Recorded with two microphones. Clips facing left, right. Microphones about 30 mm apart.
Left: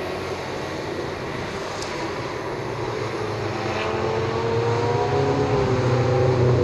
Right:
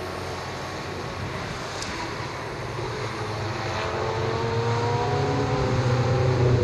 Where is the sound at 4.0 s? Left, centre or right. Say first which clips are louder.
Left 3 dB; left.